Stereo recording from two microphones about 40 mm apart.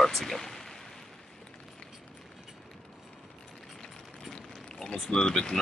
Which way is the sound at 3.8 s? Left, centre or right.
Centre.